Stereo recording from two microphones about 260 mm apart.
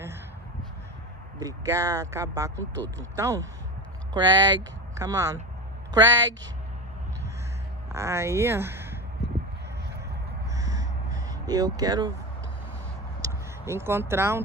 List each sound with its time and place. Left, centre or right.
1.4 s speech: centre
7.9 s speech: centre
10.5 s a sound: centre
13.2 s speech: centre